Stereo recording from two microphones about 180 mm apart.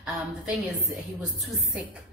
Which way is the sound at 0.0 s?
5° right (ahead or behind).